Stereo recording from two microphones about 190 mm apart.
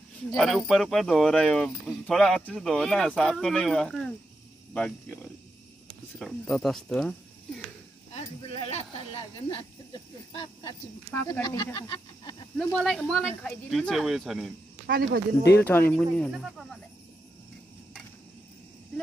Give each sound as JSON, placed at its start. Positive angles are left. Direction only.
{"t": 0.4, "sound": "speech", "side_deg": 0}
{"t": 8.5, "sound": "speech", "side_deg": 30}
{"t": 11.1, "sound": "speech", "side_deg": 10}
{"t": 11.4, "sound": "speech", "side_deg": 20}
{"t": 12.5, "sound": "speech", "side_deg": 0}
{"t": 14.9, "sound": "speech", "side_deg": -55}
{"t": 15.6, "sound": "speech", "side_deg": 10}